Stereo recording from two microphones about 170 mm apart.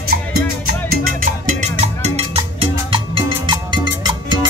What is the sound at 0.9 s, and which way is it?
Music, 55° right (ahead or behind).